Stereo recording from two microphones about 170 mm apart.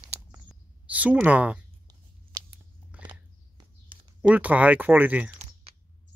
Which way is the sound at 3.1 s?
25° right (ahead or behind).